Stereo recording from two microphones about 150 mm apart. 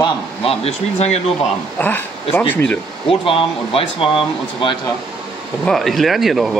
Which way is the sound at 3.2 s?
40° left (ahead or behind).